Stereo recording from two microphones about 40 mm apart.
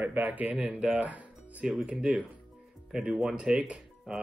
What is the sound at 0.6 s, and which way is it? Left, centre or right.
Speech, right.